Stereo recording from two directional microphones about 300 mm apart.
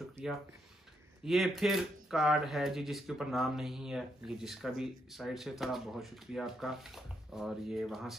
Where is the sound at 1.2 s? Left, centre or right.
Centre.